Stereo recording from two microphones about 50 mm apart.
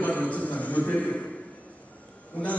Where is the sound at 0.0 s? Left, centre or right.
Left.